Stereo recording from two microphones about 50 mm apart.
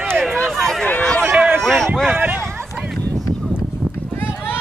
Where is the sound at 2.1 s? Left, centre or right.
Right.